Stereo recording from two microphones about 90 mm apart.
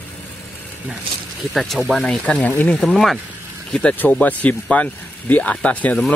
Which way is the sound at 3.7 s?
15° left (ahead or behind).